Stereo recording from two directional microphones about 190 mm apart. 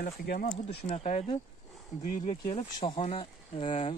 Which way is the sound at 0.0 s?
45° left (ahead or behind).